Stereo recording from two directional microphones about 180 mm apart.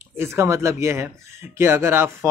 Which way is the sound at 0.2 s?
15° right (ahead or behind).